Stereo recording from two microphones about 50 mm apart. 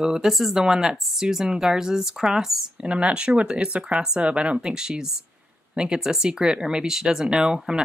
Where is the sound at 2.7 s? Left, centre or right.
Centre.